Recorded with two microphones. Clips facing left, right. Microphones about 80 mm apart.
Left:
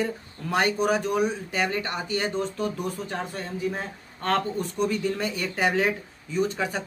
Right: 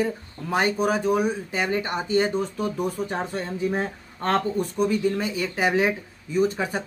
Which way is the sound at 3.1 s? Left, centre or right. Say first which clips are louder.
Right 4 dB; right.